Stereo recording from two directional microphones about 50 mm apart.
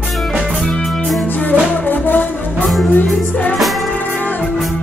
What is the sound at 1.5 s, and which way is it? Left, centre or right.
Music, left.